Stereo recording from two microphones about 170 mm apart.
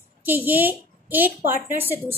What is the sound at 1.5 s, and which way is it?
Speech, 50° right (ahead or behind).